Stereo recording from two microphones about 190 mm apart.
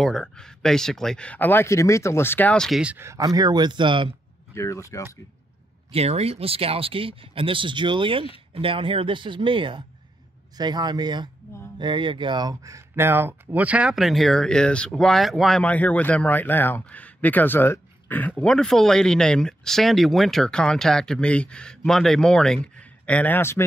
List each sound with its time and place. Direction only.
0.0 s speech: 5° left (ahead or behind); by 4.2 s 25° right (ahead or behind)
4.6 s speech: 15° left (ahead or behind)
5.9 s speech: 35° right (ahead or behind); by 23.6 s 10° left (ahead or behind)